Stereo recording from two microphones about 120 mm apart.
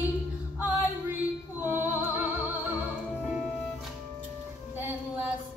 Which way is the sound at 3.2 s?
5° right (ahead or behind).